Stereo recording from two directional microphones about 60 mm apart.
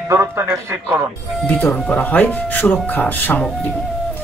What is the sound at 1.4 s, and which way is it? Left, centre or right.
Speech, left.